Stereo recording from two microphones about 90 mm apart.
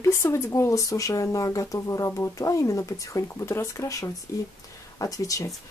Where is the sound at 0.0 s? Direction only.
30° left (ahead or behind).